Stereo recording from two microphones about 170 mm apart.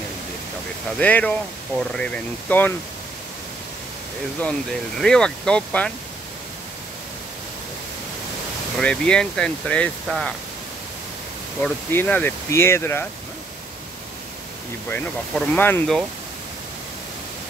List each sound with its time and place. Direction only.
0.9 s speech: 10° left (ahead or behind)
4.4 s speech: 5° left (ahead or behind)
8.7 s speech: 5° left (ahead or behind)
11.6 s speech: 10° left (ahead or behind)
14.9 s speech: 10° left (ahead or behind)